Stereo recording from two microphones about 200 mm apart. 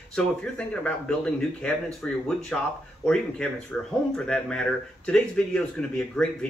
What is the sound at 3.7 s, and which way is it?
A man's voice, 5° left (ahead or behind).